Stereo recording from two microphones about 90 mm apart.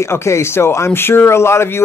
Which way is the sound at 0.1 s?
30° left (ahead or behind).